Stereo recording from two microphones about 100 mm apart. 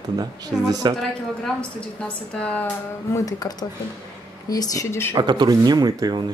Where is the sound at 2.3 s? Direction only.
15° left (ahead or behind).